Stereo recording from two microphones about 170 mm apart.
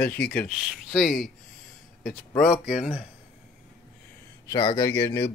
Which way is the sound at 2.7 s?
35° left (ahead or behind).